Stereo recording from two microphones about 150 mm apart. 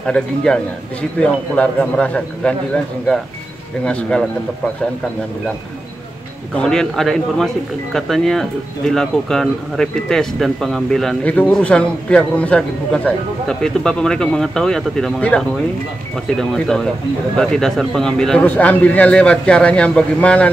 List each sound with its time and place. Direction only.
0.0 s speech: 5° left (ahead or behind)
6.5 s speech: 5° left (ahead or behind)